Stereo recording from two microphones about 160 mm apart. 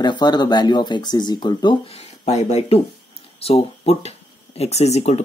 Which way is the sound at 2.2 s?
40° left (ahead or behind).